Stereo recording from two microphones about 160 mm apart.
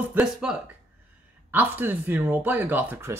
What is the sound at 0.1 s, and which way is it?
Speech, 5° right (ahead or behind).